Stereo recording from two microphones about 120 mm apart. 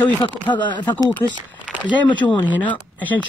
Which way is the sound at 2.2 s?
15° left (ahead or behind).